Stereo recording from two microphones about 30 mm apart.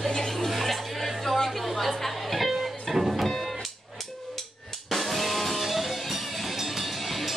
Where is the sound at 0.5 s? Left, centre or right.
Centre.